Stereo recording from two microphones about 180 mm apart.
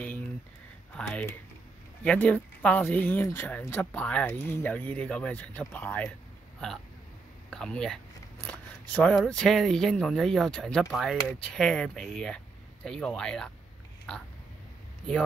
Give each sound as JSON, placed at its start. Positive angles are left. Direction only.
{"t": 0.0, "sound": "a sound", "side_deg": 10}
{"t": 0.9, "sound": "speech", "side_deg": 10}
{"t": 7.5, "sound": "speech", "side_deg": 5}